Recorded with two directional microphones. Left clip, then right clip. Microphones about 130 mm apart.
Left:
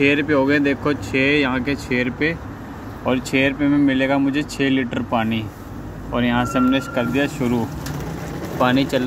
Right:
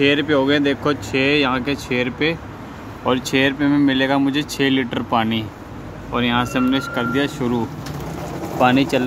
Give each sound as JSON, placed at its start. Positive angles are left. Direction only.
{"t": 0.0, "sound": "speech", "side_deg": -20}
{"t": 6.1, "sound": "speech", "side_deg": -15}
{"t": 8.5, "sound": "speech", "side_deg": -20}